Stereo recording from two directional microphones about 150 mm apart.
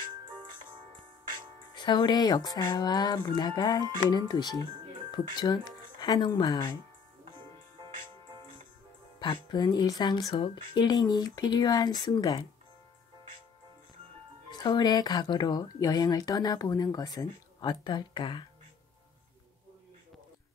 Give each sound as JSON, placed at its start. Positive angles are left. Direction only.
{"t": 0.2, "sound": "music", "side_deg": -35}
{"t": 1.7, "sound": "speech", "side_deg": 30}
{"t": 9.2, "sound": "speech", "side_deg": 30}
{"t": 14.5, "sound": "speech", "side_deg": 30}